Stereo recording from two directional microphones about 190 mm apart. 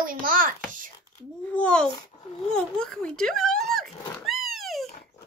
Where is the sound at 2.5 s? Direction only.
5° left (ahead or behind).